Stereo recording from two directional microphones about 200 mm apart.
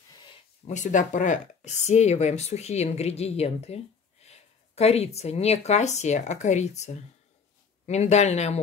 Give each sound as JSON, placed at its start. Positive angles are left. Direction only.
{"t": 0.7, "sound": "speech", "side_deg": 40}